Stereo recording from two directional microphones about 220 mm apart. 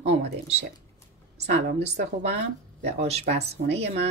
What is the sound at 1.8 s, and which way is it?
A woman's voice, 30° right (ahead or behind).